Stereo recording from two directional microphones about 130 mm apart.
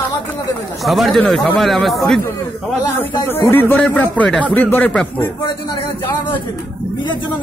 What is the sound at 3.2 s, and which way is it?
A man's voice, 15° left (ahead or behind).